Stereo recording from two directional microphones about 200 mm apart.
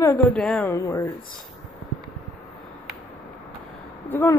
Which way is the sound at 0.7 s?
15° left (ahead or behind).